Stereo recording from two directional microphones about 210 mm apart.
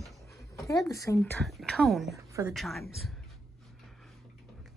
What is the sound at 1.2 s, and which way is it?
Speech, centre (ahead or behind).